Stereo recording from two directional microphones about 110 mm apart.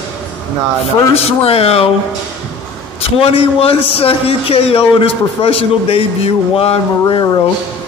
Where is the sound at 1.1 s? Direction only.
65° left (ahead or behind).